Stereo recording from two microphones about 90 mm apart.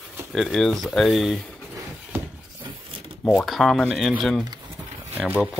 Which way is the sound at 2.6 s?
80° right.